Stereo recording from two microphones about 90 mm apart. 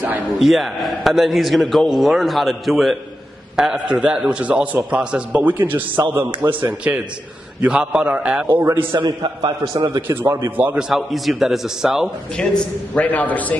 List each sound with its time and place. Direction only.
0.4 s a man's voice: centre (ahead or behind); by 6.7 s 25° right (ahead or behind)
7.6 s a man's voice: 10° right (ahead or behind)
8.7 s a man's voice: 60° right (ahead or behind)
10.0 s a man's voice: 25° right (ahead or behind)
10.8 s a man's voice: centre (ahead or behind)
12.4 s a man's voice: 10° left (ahead or behind)